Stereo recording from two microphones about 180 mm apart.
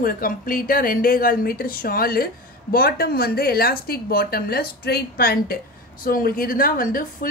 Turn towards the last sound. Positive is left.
turn(degrees=50)  # may be behind; listen again after turning